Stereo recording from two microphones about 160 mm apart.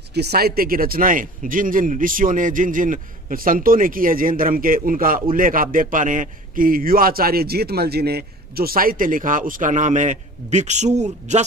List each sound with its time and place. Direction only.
0.1 s a man's voice: 85° right; by 11.4 s 45° right (ahead or behind)